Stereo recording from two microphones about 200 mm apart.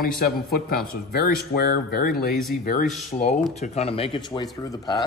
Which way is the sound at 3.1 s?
35° left (ahead or behind).